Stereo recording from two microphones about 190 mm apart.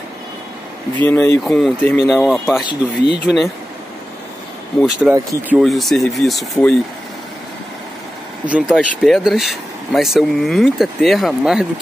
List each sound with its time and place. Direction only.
1.0 s speech: 10° left (ahead or behind); by 3.4 s 5° right (ahead or behind)
4.8 s speech: 5° right (ahead or behind)
5.1 s speech: 15° right (ahead or behind)
5.6 s speech: centre (ahead or behind)
8.5 s speech: 5° right (ahead or behind)